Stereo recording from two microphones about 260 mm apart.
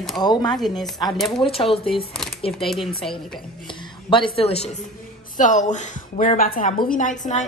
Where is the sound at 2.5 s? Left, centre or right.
Centre.